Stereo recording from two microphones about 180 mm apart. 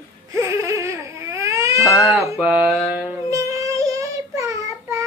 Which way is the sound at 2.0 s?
Centre (ahead or behind).